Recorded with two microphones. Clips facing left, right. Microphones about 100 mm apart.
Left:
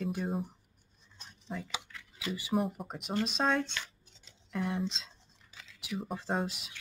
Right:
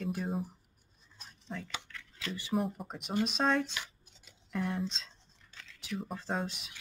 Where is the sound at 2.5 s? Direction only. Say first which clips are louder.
Left 1 dB; centre (ahead or behind).